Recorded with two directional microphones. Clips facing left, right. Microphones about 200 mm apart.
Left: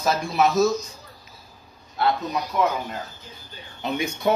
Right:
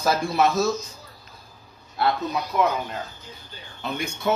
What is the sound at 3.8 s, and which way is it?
Speech, 15° left (ahead or behind).